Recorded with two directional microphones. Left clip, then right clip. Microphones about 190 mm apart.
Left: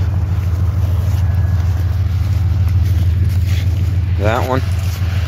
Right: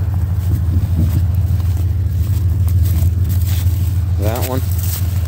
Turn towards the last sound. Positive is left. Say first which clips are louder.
# left 5 dB
turn(degrees=-5)  # may be behind; listen again after turning